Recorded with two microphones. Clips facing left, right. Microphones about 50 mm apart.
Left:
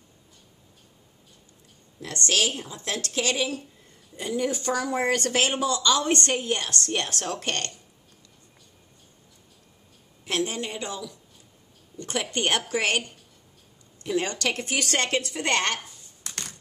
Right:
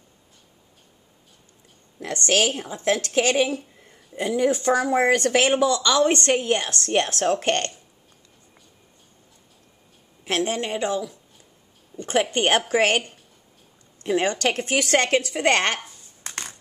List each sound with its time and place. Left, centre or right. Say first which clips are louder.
2.0 s a woman's voice: right 4 dB; right
10.2 s a woman's voice: right 4 dB; right
15.8 s a sound: right 3 dB; right